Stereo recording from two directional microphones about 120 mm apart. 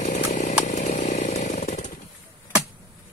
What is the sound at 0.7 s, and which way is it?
Chainsaw, 90° left.